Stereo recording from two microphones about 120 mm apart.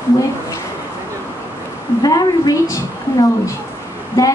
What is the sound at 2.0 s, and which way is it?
A woman's voice, 35° left (ahead or behind).